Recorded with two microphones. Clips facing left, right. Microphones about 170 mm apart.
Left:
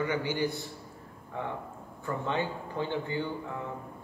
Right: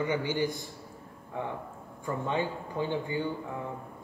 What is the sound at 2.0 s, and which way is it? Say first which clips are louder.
Speech: right 1 dB; 15° right (ahead or behind).